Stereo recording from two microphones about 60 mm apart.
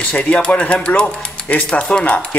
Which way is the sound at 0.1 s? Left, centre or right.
Centre.